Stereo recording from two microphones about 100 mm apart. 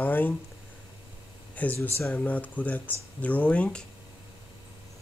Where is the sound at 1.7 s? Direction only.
25° left (ahead or behind).